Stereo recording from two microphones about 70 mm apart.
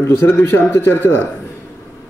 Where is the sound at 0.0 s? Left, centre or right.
Left.